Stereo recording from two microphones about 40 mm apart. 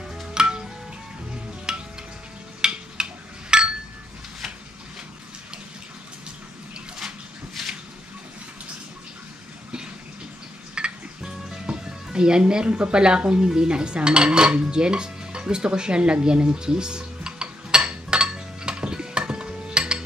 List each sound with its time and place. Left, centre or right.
0.3 s music: centre
1.7 s music: centre
2.6 s a sound: right
7.6 s a sound: centre
10.7 s music: right
11.6 s speech: right
13.5 s dishes: centre
17.8 s music: right